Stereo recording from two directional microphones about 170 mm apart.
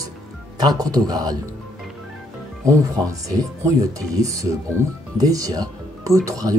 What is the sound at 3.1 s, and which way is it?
Speech, 20° right (ahead or behind).